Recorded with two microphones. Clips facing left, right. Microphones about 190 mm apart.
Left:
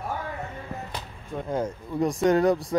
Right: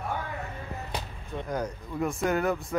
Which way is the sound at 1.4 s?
25° left (ahead or behind).